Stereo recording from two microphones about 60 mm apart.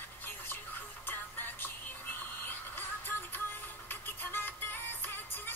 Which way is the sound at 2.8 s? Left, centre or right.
Left.